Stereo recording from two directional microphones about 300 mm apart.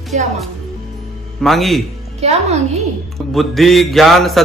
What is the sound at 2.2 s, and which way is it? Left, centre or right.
Speech, right.